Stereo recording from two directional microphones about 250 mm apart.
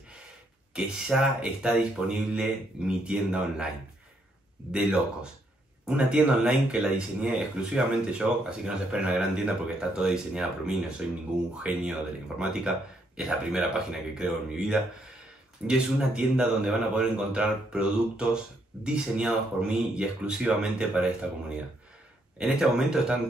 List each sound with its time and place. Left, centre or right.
0.7 s speech: centre
5.9 s speech: centre